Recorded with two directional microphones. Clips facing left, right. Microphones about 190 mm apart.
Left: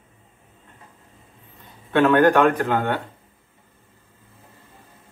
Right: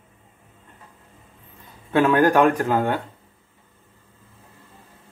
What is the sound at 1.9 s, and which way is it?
A man's voice, 10° right (ahead or behind).